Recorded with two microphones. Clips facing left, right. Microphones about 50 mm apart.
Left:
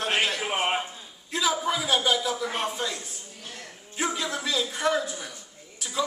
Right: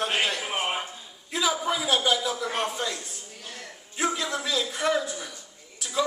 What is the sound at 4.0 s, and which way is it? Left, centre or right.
A man's voice, centre.